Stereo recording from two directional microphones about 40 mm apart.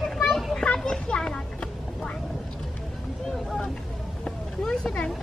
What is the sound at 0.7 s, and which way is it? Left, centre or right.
Speech, centre.